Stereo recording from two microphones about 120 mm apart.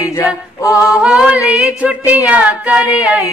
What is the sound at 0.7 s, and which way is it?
A capella, 10° right (ahead or behind).